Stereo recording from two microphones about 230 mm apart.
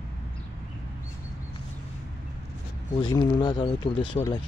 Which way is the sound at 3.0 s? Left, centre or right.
Centre.